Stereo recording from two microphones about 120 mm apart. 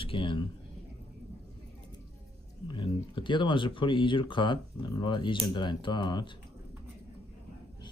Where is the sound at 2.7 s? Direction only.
45° left (ahead or behind).